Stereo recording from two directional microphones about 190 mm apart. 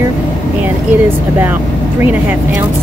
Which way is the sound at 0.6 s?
10° right (ahead or behind).